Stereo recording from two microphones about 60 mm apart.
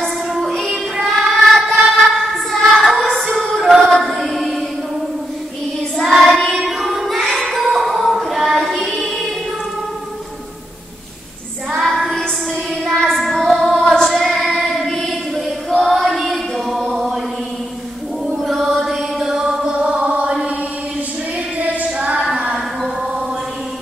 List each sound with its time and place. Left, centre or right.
0.3 s music: centre
0.9 s child singing: centre
1.8 s a sound: centre
3.5 s music: centre
5.9 s child singing: centre
6.6 s singing: centre
11.8 s child singing: centre
18.2 s chant: centre
21.5 s child singing: right
22.3 s a sound: centre